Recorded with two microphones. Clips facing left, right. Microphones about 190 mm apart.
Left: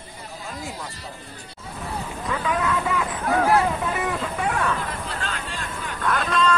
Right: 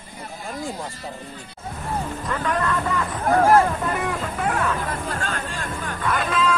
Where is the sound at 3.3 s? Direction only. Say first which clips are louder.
Right 4 dB; 45° right (ahead or behind).